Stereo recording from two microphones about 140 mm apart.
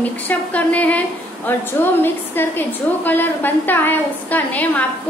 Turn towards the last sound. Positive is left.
turn(degrees=10)  # may be behind; listen again after turning